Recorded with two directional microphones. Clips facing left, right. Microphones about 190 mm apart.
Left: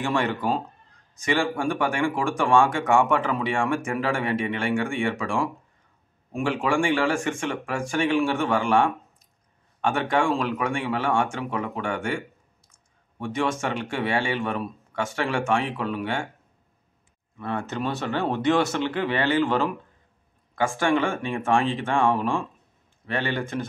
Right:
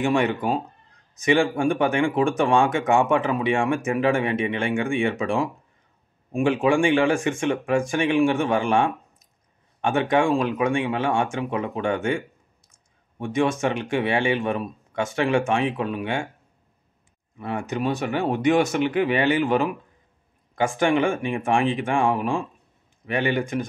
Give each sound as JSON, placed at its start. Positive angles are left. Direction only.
{"t": 0.0, "sound": "speech", "side_deg": -15}
{"t": 13.2, "sound": "speech", "side_deg": -15}
{"t": 17.4, "sound": "speech", "side_deg": -15}